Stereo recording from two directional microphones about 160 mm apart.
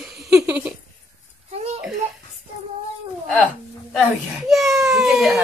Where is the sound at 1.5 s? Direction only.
40° right (ahead or behind).